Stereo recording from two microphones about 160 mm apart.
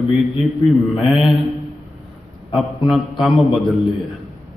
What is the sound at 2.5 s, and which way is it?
A man's voice, centre (ahead or behind).